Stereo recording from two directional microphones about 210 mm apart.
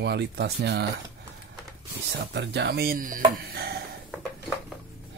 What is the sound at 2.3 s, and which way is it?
Speech, 55° right (ahead or behind).